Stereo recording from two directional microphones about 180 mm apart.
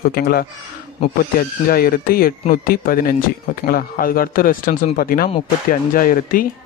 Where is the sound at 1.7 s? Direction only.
55° left (ahead or behind).